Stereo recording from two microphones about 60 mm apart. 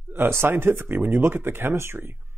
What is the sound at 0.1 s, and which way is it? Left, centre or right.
Speech, right.